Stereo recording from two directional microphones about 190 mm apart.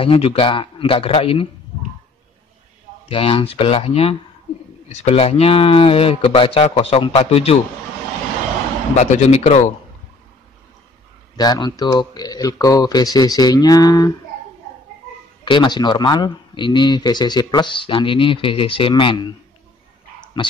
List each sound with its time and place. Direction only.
0.0 s speech: 30° left (ahead or behind)
3.1 s speech: 30° left (ahead or behind)
8.9 s speech: 35° left (ahead or behind)
11.3 s speech: 20° left (ahead or behind)
15.4 s speech: 25° left (ahead or behind)
20.4 s speech: 25° left (ahead or behind)